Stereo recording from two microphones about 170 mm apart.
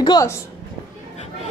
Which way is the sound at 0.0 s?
25° left (ahead or behind).